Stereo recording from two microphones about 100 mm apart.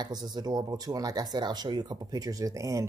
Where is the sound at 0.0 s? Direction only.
40° right (ahead or behind).